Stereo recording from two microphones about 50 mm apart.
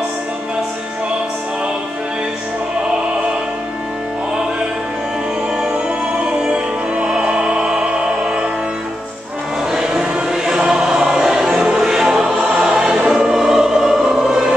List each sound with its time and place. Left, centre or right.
6.1 s music: right
9.7 s choir: centre